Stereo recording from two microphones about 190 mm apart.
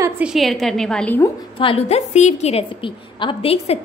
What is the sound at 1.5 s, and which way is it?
A woman's voice, 30° left (ahead or behind).